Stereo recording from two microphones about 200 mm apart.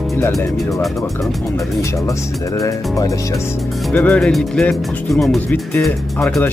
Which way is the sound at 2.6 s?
15° left (ahead or behind).